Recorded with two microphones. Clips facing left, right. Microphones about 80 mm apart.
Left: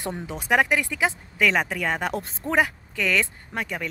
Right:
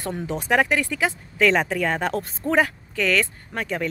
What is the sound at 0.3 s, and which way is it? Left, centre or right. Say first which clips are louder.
Speech: right 1 dB; centre.